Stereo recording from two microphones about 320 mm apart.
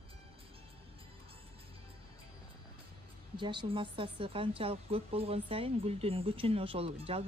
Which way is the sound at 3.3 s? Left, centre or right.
Centre.